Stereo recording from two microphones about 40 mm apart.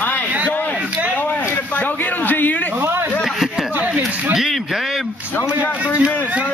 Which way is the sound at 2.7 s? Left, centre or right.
Right.